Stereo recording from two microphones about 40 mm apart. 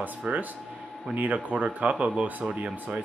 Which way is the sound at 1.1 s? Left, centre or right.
Right.